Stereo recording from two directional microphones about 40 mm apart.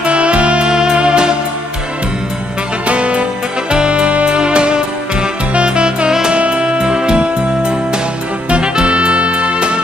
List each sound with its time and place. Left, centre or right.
0.0 s music: right
2.9 s music: right